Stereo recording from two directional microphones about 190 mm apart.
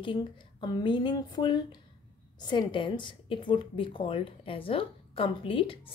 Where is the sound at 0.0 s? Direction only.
25° left (ahead or behind).